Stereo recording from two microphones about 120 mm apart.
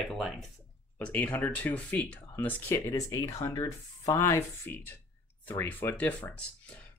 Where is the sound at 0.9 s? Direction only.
15° left (ahead or behind); by 4.2 s 35° left (ahead or behind).